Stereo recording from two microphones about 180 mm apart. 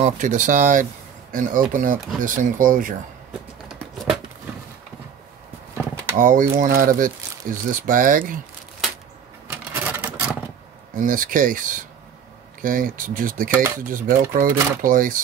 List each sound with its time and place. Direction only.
0.0 s speech: 45° right (ahead or behind)
6.1 s speech: 50° right (ahead or behind)
9.5 s a sound: 10° right (ahead or behind)
11.0 s speech: 50° right (ahead or behind)